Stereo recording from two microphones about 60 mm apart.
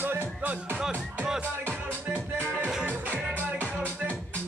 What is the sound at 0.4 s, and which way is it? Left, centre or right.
Music, right.